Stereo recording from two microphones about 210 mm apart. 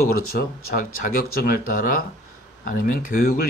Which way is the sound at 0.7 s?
40° left (ahead or behind).